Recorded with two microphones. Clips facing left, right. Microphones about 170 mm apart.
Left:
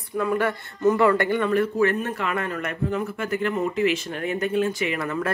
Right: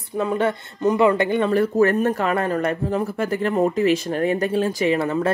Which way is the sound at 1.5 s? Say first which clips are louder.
Right 5 dB; 40° right (ahead or behind).